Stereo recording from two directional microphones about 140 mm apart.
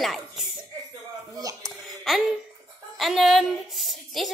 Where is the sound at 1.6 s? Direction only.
Centre (ahead or behind).